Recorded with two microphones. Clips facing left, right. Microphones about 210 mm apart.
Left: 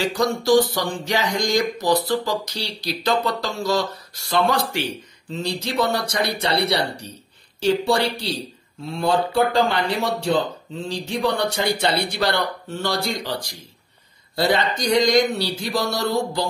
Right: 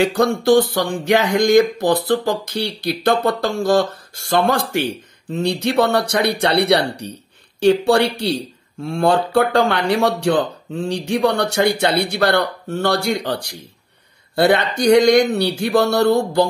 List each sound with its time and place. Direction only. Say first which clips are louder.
0.0 s speech: right 5 dB; 55° right (ahead or behind); by 10.8 s 85° right
10.9 s speech: right 5 dB; 70° right (ahead or behind)